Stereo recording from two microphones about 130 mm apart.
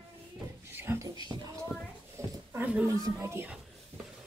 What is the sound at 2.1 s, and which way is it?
Dog, 20° right (ahead or behind).